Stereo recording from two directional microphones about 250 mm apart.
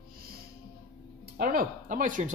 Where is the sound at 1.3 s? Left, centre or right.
Right.